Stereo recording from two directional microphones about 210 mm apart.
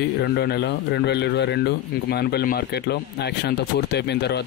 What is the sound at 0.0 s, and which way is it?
Speech, 50° left (ahead or behind).